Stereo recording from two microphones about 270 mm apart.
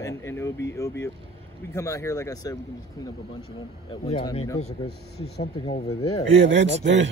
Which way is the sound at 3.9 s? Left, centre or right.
Centre.